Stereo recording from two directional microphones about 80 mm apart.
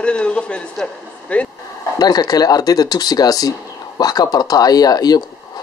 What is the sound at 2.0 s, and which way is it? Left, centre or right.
Speech, left.